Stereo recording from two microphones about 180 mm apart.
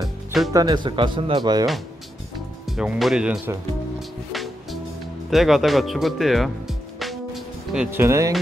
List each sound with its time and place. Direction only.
0.5 s speech: 20° right (ahead or behind)
2.7 s speech: 5° right (ahead or behind)
5.3 s speech: centre (ahead or behind)